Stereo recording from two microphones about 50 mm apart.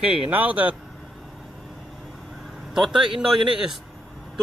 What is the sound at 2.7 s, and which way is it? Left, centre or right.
A man's voice, centre.